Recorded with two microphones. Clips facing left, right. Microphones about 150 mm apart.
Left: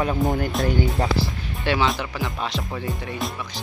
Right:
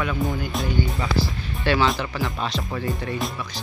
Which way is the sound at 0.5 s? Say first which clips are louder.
Left 3 dB; centre (ahead or behind).